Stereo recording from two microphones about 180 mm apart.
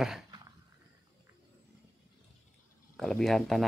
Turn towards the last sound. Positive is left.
turn(degrees=0)  # may be behind; listen again after turning